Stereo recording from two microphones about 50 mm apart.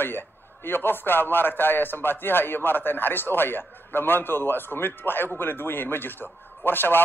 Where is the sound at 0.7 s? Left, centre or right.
Left.